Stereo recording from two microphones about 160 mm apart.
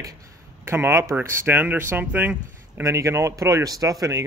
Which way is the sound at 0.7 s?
15° right (ahead or behind).